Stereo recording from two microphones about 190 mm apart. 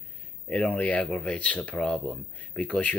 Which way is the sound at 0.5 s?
5° left (ahead or behind).